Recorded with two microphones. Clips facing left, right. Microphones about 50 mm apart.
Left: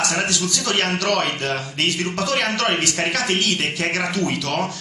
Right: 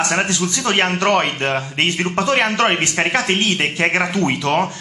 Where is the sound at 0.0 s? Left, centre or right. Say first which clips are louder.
Right 3 dB; right.